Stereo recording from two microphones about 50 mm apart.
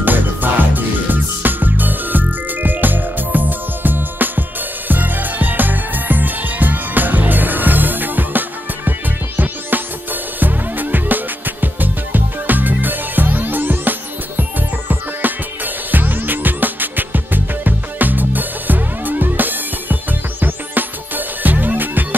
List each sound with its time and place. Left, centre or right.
0.0 s music: right
10.4 s music: right